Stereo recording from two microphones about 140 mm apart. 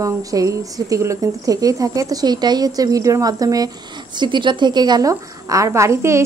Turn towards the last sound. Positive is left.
turn(degrees=-20)  # may be behind; listen again after turning